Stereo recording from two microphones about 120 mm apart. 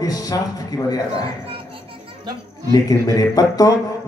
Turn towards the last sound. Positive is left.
turn(degrees=30)  # may be behind; listen again after turning